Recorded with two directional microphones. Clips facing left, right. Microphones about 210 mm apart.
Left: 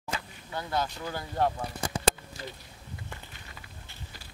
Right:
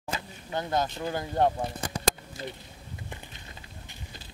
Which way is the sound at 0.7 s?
25° right (ahead or behind).